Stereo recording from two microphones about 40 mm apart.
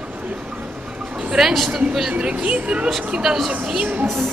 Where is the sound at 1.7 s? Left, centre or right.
Centre.